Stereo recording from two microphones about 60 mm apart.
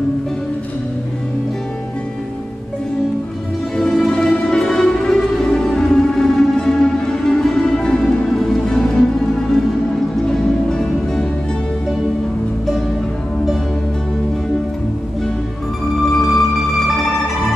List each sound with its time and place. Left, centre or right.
3.7 s music: centre
16.1 s music: centre